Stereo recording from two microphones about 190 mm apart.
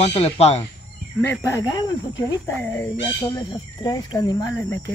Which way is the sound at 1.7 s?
20° left (ahead or behind).